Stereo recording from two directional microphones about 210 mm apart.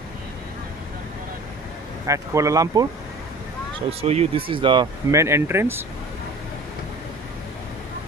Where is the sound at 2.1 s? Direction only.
15° right (ahead or behind).